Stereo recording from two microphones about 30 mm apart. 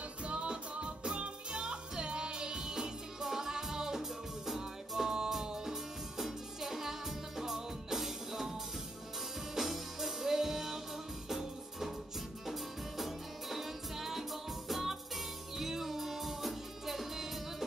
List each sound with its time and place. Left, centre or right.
0.2 s music: right; by 8.5 s centre
9.6 s music: centre